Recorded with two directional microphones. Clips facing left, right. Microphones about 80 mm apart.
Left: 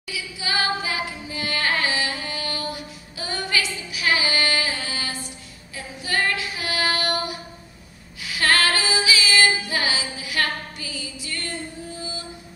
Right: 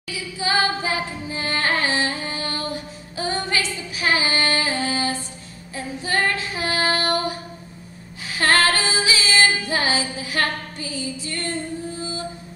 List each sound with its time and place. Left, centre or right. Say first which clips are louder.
0.4 s carnatic music: right 3 dB; right
6.0 s female singing: right 1 dB; right